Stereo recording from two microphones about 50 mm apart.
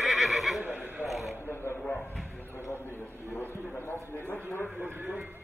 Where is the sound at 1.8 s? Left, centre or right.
Left.